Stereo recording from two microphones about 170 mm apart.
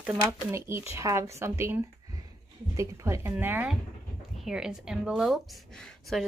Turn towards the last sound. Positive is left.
turn(degrees=0)  # may be behind; listen again after turning